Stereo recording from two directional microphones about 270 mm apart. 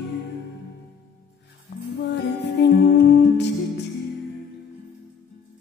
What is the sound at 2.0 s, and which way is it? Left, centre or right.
Music, left.